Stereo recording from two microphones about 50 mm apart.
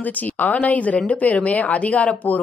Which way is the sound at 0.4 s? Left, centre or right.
Left.